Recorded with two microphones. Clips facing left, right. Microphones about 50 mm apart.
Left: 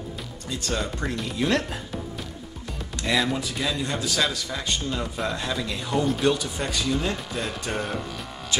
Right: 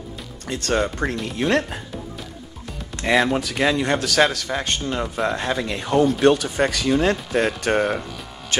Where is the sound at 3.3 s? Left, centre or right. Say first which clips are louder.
Right 7 dB; right.